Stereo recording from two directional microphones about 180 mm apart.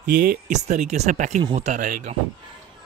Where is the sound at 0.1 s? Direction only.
50° right (ahead or behind).